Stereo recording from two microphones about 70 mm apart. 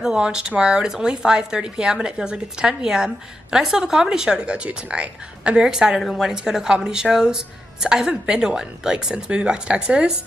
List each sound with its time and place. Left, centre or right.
0.0 s speech: centre